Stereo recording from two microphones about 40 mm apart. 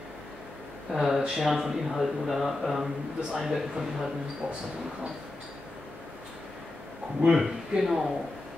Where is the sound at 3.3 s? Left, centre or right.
Centre.